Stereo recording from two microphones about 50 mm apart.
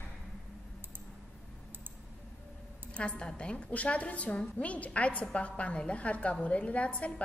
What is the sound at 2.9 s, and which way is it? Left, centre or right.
A woman's voice, left.